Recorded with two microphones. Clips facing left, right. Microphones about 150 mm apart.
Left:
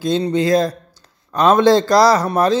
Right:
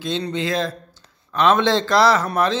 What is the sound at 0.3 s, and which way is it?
Speech, 40° left (ahead or behind).